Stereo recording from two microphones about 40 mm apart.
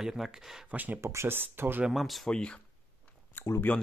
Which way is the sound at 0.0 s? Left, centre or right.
Centre.